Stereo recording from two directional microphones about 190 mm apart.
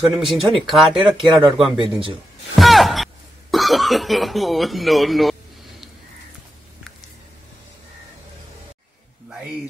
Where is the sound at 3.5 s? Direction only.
Centre (ahead or behind).